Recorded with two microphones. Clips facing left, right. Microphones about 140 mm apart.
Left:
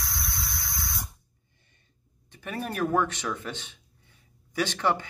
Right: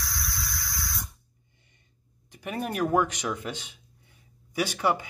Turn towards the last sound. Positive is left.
turn(degrees=-10)  # may be behind; listen again after turning